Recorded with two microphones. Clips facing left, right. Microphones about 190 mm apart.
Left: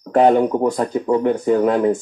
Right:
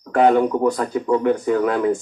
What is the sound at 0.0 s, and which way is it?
Speech, 35° left (ahead or behind).